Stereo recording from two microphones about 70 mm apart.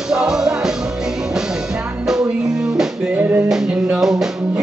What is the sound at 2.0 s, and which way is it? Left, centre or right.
Music, centre.